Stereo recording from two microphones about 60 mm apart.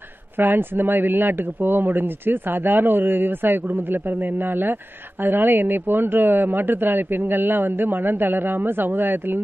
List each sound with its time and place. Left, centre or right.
0.4 s speech: right